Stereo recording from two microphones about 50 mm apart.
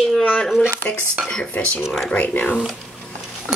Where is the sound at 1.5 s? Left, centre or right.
Left.